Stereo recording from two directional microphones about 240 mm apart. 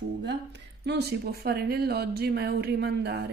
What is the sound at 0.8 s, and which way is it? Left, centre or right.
Speech, right.